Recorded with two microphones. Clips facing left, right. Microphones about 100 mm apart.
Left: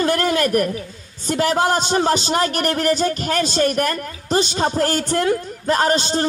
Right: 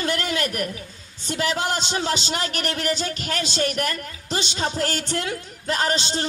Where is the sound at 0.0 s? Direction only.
45° left (ahead or behind).